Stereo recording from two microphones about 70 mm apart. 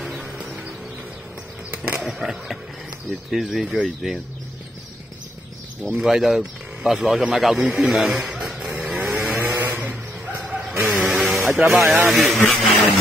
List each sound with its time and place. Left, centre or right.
0.0 s music: centre
1.7 s a sound: centre
2.0 s speech: centre
5.9 s speech: centre
7.6 s speech: centre
7.9 s a sound: centre
8.6 s vehicle: centre
10.9 s vehicle: centre
11.5 s speech: centre
12.4 s a sound: centre